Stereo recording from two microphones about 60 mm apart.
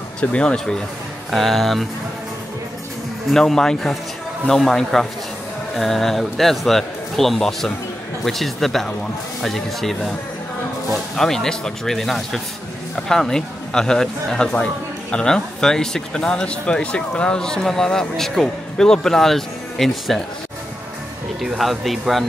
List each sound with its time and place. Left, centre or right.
0.2 s a man's voice: centre
1.3 s a man's voice: centre
3.3 s a man's voice: centre
21.5 s a man's voice: centre